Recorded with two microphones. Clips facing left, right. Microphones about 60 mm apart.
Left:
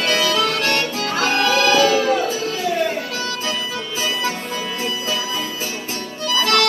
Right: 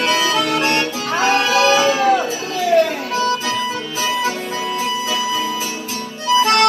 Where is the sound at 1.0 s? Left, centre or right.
Right.